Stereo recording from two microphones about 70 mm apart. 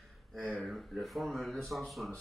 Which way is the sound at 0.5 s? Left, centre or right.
Centre.